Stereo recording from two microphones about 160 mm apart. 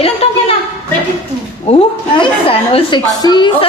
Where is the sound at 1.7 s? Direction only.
40° left (ahead or behind).